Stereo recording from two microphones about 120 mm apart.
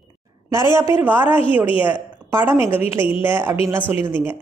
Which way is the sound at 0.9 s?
15° right (ahead or behind).